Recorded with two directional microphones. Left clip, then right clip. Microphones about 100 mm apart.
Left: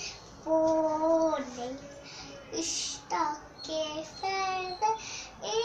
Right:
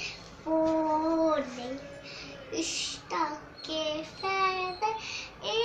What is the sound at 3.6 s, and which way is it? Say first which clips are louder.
Child singing: right 2 dB; 55° left (ahead or behind).